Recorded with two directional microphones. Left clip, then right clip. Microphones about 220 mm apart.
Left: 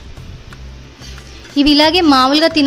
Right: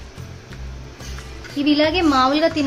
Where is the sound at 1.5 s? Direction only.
50° left (ahead or behind).